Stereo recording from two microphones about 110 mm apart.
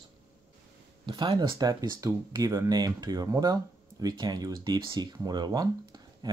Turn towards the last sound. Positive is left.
turn(degrees=-40)  # may be behind; listen again after turning